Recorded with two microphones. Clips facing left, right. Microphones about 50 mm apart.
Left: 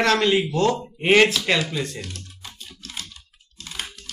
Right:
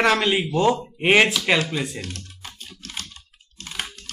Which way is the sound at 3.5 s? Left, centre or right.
Right.